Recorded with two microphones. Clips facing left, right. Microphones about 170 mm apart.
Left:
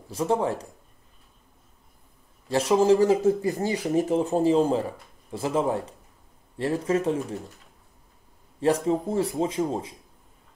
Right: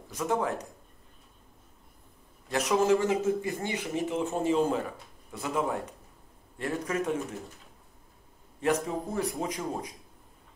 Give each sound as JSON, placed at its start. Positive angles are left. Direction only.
{"t": 0.1, "sound": "speech", "side_deg": 30}
{"t": 2.5, "sound": "speech", "side_deg": 30}
{"t": 7.3, "sound": "speech", "side_deg": 0}
{"t": 8.8, "sound": "speech", "side_deg": 30}